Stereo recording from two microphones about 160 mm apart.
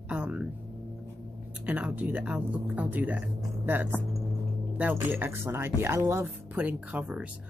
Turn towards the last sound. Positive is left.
turn(degrees=-10)  # may be behind; listen again after turning